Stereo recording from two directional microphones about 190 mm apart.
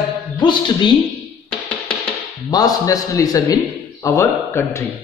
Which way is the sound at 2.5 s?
20° left (ahead or behind).